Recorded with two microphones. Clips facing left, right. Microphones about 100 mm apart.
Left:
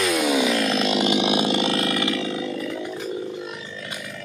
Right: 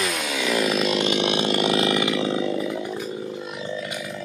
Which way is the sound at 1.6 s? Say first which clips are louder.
Right 2 dB; 10° right (ahead or behind).